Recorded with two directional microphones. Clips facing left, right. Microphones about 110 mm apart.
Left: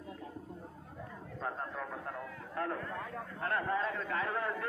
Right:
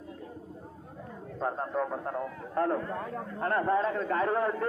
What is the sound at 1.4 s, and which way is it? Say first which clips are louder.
A man's voice: right 9 dB; 30° right (ahead or behind).